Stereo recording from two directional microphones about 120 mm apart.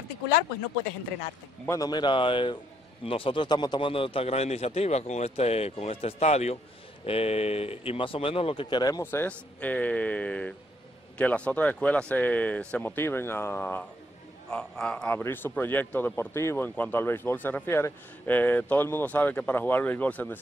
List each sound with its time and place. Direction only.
1.7 s speech: 35° left (ahead or behind)
9.0 s a man's voice: 15° left (ahead or behind)
14.5 s a man's voice: 5° left (ahead or behind)